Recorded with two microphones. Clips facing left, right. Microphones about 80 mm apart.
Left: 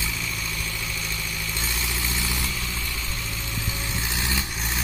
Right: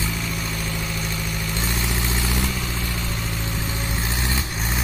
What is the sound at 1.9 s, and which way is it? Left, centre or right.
Vehicle, right.